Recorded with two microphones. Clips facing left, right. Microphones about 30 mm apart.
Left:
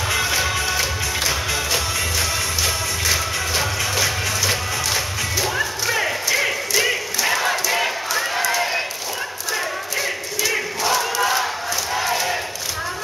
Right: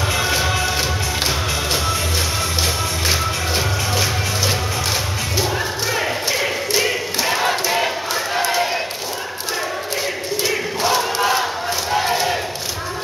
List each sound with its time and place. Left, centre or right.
0.2 s music: centre
2.6 s music: right
5.9 s a sound: centre
7.2 s crowd: right
8.1 s a sound: right
10.8 s crowd: right
12.0 s battle cry: right